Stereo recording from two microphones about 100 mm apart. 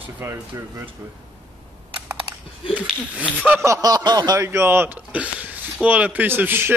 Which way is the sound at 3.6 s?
35° right (ahead or behind).